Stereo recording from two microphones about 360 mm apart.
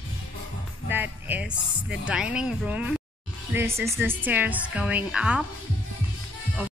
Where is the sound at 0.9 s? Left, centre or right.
Centre.